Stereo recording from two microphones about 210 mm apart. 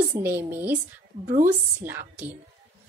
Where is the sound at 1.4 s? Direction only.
40° right (ahead or behind).